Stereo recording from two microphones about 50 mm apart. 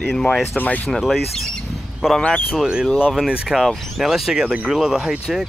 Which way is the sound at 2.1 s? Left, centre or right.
Centre.